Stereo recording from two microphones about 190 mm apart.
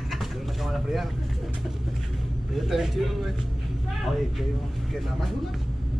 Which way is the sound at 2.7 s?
Centre (ahead or behind).